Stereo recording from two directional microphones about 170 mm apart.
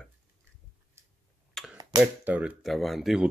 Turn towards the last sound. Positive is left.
turn(degrees=0)  # may be behind; listen again after turning